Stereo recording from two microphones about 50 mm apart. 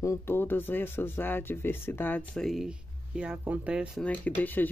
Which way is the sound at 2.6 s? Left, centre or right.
Centre.